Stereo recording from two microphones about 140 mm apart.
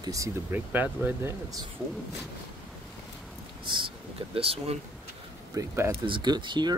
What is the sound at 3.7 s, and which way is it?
Speech, 40° right (ahead or behind).